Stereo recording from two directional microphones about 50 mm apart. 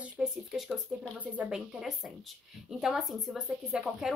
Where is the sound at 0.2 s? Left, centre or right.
Centre.